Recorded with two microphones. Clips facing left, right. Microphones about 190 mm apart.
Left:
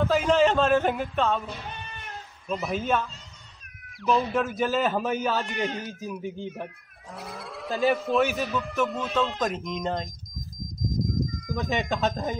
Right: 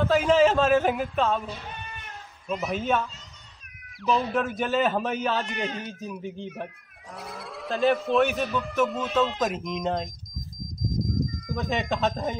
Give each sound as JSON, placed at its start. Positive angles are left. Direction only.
{"t": 0.0, "sound": "a man's voice", "side_deg": 0}
{"t": 2.4, "sound": "speech", "side_deg": -5}
{"t": 5.7, "sound": "speech", "side_deg": 40}
{"t": 5.9, "sound": "speech", "side_deg": 5}
{"t": 10.8, "sound": "a sound", "side_deg": 0}